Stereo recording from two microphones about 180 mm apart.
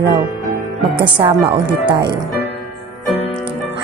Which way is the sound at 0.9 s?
30° right (ahead or behind).